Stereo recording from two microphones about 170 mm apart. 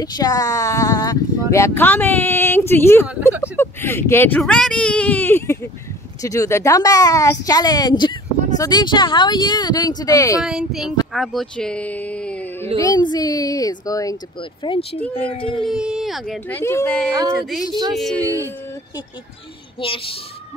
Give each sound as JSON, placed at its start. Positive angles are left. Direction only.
{"t": 0.0, "sound": "speech", "side_deg": 20}
{"t": 4.4, "sound": "a woman's voice", "side_deg": 5}
{"t": 10.4, "sound": "speech", "side_deg": 0}
{"t": 12.7, "sound": "a woman's voice", "side_deg": 20}
{"t": 15.6, "sound": "speech", "side_deg": -5}
{"t": 16.4, "sound": "speech", "side_deg": 15}
{"t": 17.1, "sound": "speech", "side_deg": -20}
{"t": 17.9, "sound": "speech", "side_deg": 5}
{"t": 19.8, "sound": "a child's voice", "side_deg": 30}